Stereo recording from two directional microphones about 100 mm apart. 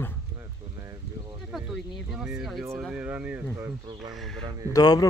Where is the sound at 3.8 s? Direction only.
50° right (ahead or behind).